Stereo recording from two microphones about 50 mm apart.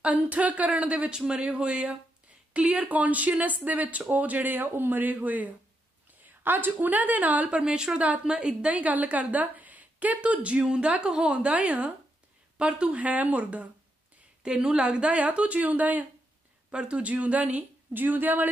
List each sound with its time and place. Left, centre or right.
0.0 s a woman's voice: right
7.4 s a woman's voice: centre
14.4 s a woman's voice: centre; by 18.5 s right